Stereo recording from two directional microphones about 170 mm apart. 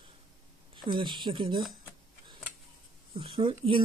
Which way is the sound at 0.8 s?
30° right (ahead or behind).